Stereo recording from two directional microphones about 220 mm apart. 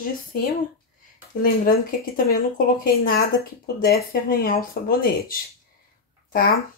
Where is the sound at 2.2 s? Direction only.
40° left (ahead or behind).